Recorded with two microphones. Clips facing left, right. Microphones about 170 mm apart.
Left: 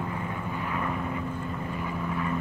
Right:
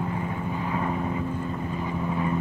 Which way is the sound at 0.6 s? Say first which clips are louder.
Right 3 dB; 25° right (ahead or behind).